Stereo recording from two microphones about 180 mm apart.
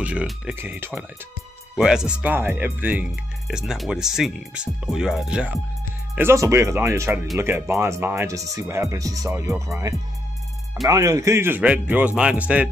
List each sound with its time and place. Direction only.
0.0 s speech: 5° right (ahead or behind)